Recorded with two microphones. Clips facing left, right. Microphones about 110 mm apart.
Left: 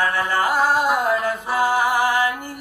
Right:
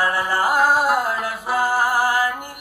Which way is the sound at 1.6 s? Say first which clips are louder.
Left 1 dB; 45° right (ahead or behind).